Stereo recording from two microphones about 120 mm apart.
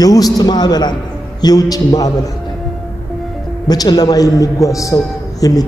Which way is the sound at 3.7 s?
35° left (ahead or behind).